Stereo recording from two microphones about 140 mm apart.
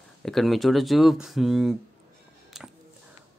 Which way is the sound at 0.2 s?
Centre (ahead or behind).